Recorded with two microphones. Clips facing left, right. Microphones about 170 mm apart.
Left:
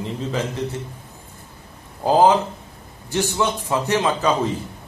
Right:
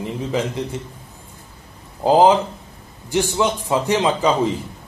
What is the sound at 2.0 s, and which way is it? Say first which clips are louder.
A man's voice: right 2 dB; 15° right (ahead or behind).